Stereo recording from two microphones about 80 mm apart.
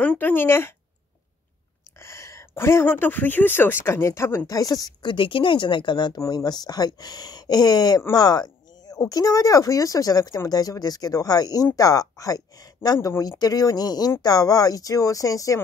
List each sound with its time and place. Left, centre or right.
0.0 s speech: left
2.0 s speech: left
4.5 s speech: left
5.0 s a woman's voice: left
8.1 s a sound: left
9.0 s speech: left